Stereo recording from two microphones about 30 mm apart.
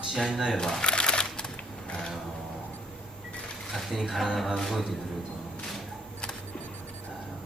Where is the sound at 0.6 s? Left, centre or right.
Left.